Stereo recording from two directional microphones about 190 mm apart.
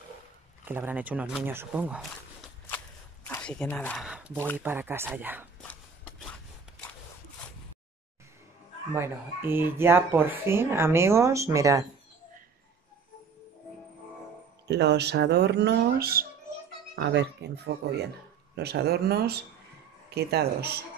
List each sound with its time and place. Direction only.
0.7 s speech: 10° right (ahead or behind); by 4.0 s 10° left (ahead or behind)
4.0 s speech: 5° right (ahead or behind)
5.6 s a sound: 5° left (ahead or behind)
8.9 s speech: 10° right (ahead or behind)
14.7 s speech: 60° right (ahead or behind)
16.9 s speech: 65° right (ahead or behind)